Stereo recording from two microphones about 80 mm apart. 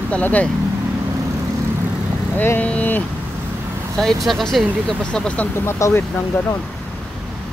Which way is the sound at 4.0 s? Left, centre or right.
Centre.